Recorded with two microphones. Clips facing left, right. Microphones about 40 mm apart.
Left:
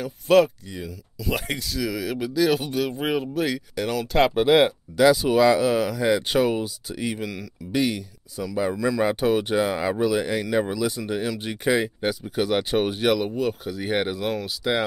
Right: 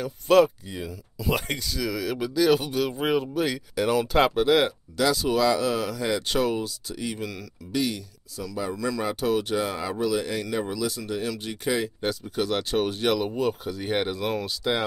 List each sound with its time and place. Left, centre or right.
0.0 s speech: centre
0.7 s speech: centre
1.3 s speech: centre
4.3 s speech: centre
9.0 s speech: left; by 14.8 s centre